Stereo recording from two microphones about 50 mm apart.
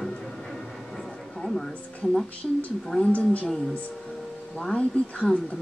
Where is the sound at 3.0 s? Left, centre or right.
Left.